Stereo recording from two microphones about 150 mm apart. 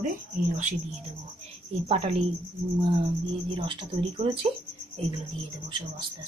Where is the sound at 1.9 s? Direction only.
45° right (ahead or behind).